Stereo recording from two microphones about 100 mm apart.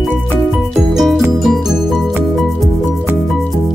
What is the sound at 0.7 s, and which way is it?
Music, centre (ahead or behind).